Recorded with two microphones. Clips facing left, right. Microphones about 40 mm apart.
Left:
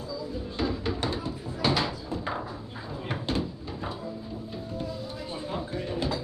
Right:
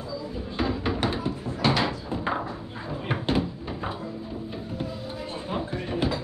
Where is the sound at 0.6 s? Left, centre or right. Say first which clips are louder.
Right 3 dB; right.